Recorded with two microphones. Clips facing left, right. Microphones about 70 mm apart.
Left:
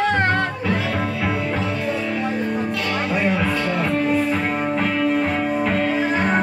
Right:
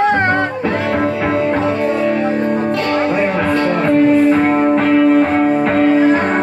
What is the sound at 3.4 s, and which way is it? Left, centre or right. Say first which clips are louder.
Speech: right 7 dB; right.